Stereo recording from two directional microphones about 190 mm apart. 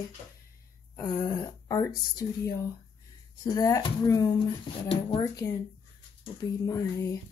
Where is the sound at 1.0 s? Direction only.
15° left (ahead or behind).